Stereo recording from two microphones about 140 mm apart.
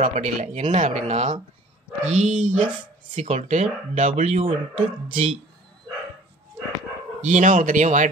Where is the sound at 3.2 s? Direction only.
55° right (ahead or behind).